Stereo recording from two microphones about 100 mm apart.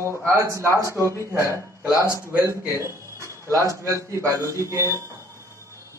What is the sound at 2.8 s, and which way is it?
A man's voice, 30° right (ahead or behind).